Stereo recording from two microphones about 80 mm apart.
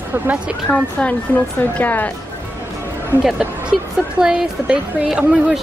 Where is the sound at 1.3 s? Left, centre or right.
Centre.